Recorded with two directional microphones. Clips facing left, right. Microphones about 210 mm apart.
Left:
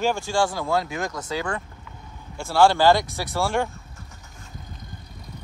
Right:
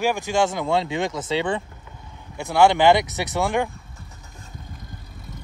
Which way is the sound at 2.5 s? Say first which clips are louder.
Right 1 dB; 20° right (ahead or behind).